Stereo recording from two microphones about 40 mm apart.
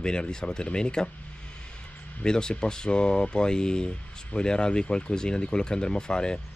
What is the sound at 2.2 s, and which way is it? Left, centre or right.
Speech, centre.